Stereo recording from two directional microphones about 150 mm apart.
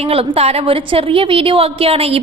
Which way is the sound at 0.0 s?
40° right (ahead or behind).